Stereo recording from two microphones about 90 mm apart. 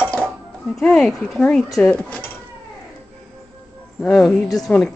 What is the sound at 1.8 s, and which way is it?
Dishes, 15° left (ahead or behind).